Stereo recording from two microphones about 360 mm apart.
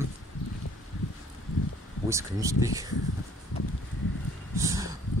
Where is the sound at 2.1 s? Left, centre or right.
Centre.